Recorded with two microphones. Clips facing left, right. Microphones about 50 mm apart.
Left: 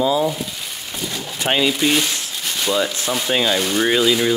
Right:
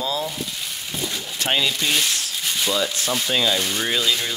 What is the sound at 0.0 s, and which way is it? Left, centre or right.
Speech, centre.